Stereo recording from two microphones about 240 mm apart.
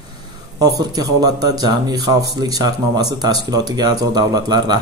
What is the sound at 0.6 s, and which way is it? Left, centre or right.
Speech, centre.